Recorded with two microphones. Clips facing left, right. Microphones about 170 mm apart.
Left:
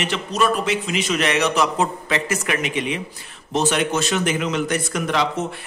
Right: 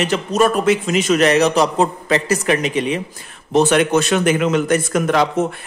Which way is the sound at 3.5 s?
55° right (ahead or behind).